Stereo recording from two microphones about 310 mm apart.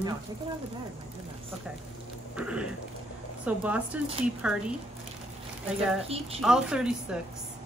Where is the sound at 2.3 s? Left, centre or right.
Centre.